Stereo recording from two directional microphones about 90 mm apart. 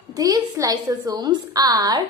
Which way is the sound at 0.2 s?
40° right (ahead or behind).